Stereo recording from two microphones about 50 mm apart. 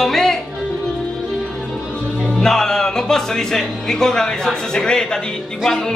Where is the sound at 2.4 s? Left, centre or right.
Centre.